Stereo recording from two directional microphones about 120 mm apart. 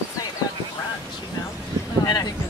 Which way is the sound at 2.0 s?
35° left (ahead or behind).